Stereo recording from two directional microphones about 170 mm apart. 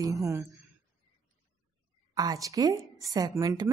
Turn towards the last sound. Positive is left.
turn(degrees=-20)  # may be behind; listen again after turning